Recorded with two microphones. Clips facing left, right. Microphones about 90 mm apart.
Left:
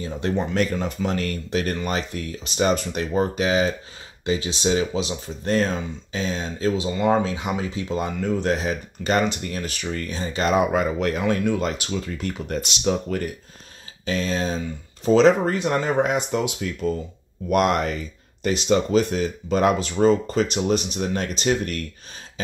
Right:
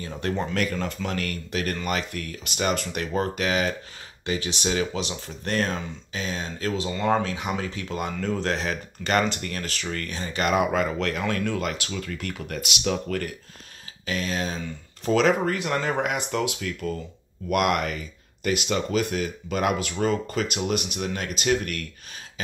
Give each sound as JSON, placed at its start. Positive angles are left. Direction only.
{"t": 0.0, "sound": "speech", "side_deg": 20}
{"t": 6.7, "sound": "speech", "side_deg": 15}